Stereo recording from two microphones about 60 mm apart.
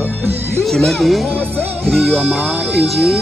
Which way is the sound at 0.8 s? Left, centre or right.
Centre.